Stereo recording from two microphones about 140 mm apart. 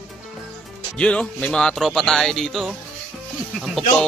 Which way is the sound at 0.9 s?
5° left (ahead or behind).